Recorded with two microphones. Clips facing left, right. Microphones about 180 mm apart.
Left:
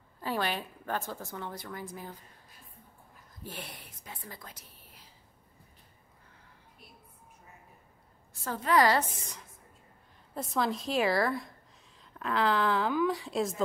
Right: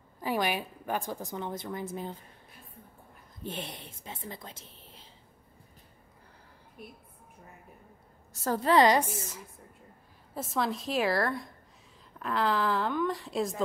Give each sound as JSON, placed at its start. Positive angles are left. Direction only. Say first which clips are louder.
{"t": 0.2, "sound": "a woman's voice", "louder": "right 3 dB", "side_deg": -15}
{"t": 3.4, "sound": "speech", "louder": "right 5 dB", "side_deg": -25}
{"t": 6.8, "sound": "a woman's voice", "louder": "right 12 dB", "side_deg": -55}
{"t": 8.3, "sound": "a woman's voice", "louder": "right 5 dB", "side_deg": -40}
{"t": 8.7, "sound": "a woman's voice", "louder": "right 2 dB", "side_deg": -20}
{"t": 10.3, "sound": "speech", "louder": "even", "side_deg": 0}